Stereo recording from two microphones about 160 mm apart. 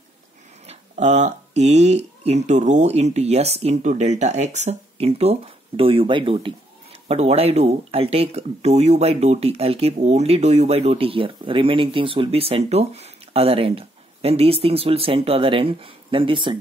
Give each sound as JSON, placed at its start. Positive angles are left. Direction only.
{"t": 0.7, "sound": "speech", "side_deg": -45}